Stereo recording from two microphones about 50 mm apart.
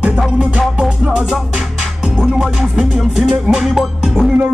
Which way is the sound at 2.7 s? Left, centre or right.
Centre.